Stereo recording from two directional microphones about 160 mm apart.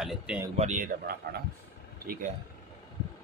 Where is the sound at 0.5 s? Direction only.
50° right (ahead or behind).